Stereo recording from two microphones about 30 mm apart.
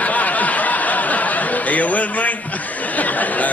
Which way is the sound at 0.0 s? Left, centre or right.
Left.